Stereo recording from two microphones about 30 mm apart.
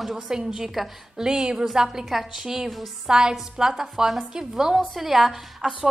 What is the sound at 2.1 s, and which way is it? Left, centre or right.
Speech, centre.